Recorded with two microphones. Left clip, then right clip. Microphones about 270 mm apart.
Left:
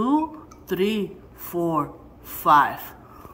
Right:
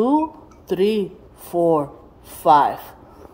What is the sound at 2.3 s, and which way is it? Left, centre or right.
Speech, centre.